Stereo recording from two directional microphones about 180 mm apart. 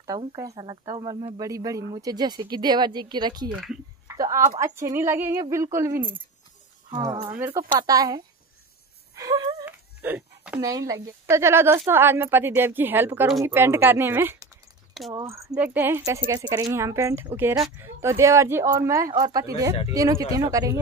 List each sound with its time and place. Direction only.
0.4 s speech: 20° right (ahead or behind)
4.1 s a sound: 15° right (ahead or behind)
4.6 s speech: 15° right (ahead or behind)
7.2 s speech: 10° right (ahead or behind)
7.6 s speech: 25° right (ahead or behind)
15.0 s speech: centre (ahead or behind); by 20.8 s 20° right (ahead or behind)